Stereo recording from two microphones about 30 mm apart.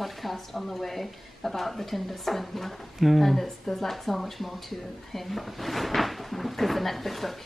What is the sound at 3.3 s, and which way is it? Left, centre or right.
Speech, centre.